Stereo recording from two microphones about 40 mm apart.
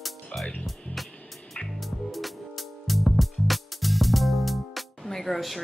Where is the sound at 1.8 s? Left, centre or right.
Centre.